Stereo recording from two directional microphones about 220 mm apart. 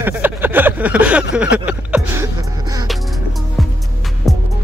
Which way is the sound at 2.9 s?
Centre (ahead or behind).